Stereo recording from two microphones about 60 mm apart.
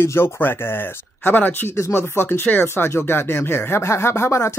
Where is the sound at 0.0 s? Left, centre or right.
Left.